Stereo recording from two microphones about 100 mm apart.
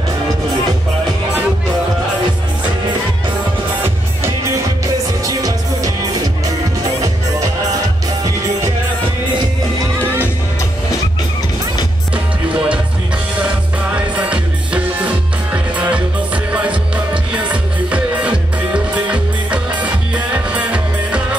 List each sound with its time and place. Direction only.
5.2 s music: 35° right (ahead or behind)
12.5 s music: 10° right (ahead or behind)
13.8 s music: 10° right (ahead or behind)